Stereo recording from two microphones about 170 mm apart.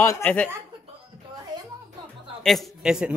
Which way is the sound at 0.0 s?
15° left (ahead or behind).